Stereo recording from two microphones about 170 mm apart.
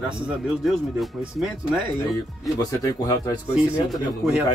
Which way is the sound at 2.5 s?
20° left (ahead or behind).